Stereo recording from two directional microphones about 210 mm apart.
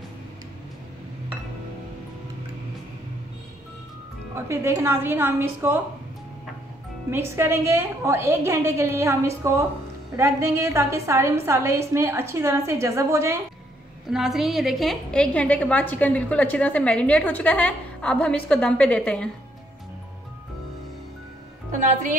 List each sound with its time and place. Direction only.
4.5 s a woman's voice: 10° right (ahead or behind)
7.1 s a woman's voice: 10° right (ahead or behind)
14.1 s a woman's voice: centre (ahead or behind)